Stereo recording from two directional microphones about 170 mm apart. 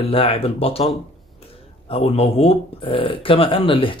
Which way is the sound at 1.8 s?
35° left (ahead or behind).